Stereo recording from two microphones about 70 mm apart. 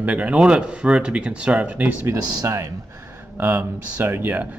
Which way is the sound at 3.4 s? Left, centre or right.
Right.